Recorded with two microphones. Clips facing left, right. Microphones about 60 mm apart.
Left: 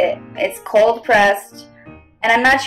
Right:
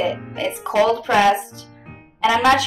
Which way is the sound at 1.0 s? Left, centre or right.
Left.